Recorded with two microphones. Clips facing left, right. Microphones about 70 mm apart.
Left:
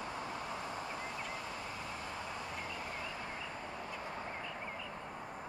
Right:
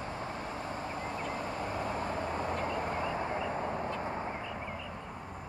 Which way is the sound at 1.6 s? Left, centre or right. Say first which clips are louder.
Right 9 dB; right.